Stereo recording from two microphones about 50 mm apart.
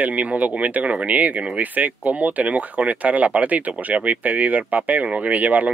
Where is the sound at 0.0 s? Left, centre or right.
Right.